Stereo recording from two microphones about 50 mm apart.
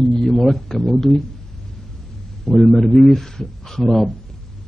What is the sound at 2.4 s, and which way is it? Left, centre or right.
A man's voice, centre.